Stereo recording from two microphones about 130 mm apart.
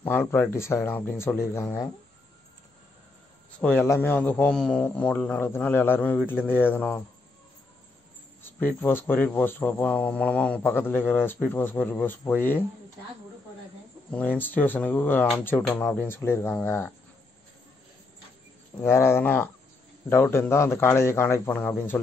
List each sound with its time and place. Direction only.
0.0 s a man's voice: 15° left (ahead or behind)
3.5 s speech: 10° left (ahead or behind)
8.4 s speech: 15° left (ahead or behind)
14.1 s a man's voice: 15° left (ahead or behind)
18.8 s a man's voice: 20° left (ahead or behind)